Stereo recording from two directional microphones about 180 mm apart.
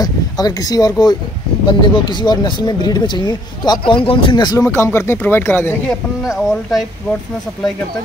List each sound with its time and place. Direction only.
0.0 s speech: 20° left (ahead or behind)
6.2 s speech: centre (ahead or behind)